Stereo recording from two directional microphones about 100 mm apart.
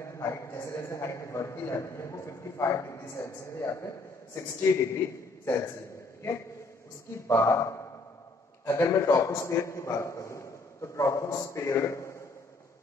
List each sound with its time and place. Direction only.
0.0 s a man's voice: 30° left (ahead or behind)
7.2 s a man's voice: 30° left (ahead or behind)